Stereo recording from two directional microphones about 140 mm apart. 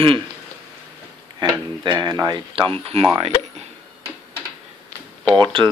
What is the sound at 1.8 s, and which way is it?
Speech, 30° right (ahead or behind).